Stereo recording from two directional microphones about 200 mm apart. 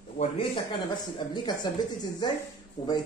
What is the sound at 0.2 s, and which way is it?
Speech, 25° left (ahead or behind).